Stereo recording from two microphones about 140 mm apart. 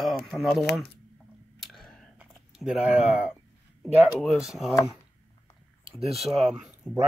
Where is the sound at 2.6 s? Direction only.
5° right (ahead or behind).